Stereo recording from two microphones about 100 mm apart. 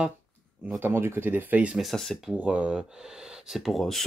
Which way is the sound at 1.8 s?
Centre (ahead or behind).